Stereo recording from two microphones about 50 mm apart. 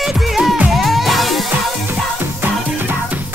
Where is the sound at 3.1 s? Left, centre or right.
Right.